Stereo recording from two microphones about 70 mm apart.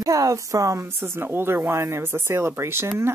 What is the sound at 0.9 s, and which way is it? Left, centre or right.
Speech, right.